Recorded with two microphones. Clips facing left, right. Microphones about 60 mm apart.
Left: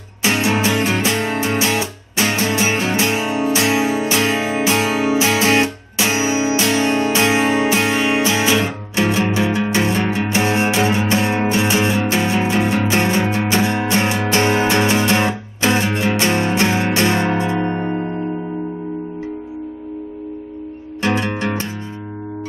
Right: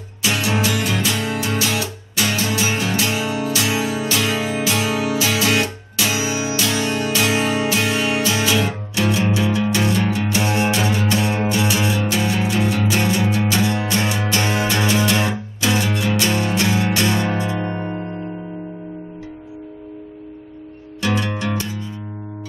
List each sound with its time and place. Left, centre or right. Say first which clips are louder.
0.2 s music: left 3 dB; left
21.0 s music: left 3 dB; left